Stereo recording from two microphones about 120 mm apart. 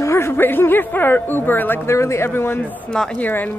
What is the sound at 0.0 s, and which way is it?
A woman's voice, 20° left (ahead or behind).